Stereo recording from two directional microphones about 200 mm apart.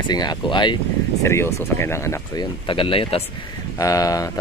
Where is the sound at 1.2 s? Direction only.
15° left (ahead or behind).